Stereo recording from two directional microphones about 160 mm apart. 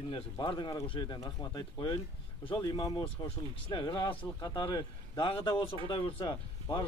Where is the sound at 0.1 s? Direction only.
30° left (ahead or behind).